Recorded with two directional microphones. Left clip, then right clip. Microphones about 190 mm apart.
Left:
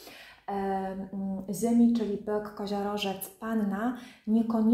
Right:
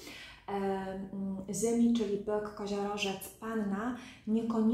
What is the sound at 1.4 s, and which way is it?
A woman's voice, 40° left (ahead or behind).